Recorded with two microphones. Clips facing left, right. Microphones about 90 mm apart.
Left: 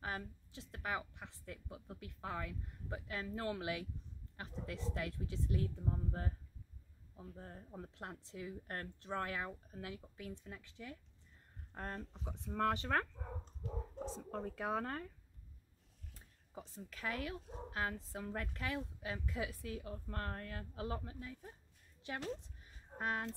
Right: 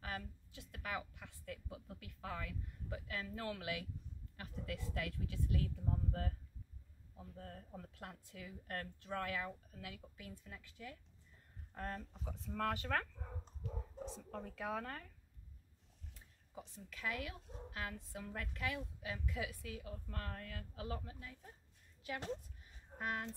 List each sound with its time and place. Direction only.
0.0 s a woman's voice: 25° left (ahead or behind)
14.1 s a woman's voice: 35° left (ahead or behind)
16.5 s a woman's voice: 35° left (ahead or behind)
22.9 s a woman's voice: 30° left (ahead or behind)